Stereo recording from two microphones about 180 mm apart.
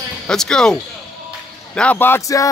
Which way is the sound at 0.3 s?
5° left (ahead or behind).